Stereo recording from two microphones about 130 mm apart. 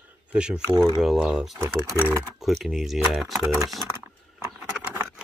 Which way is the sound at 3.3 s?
25° right (ahead or behind).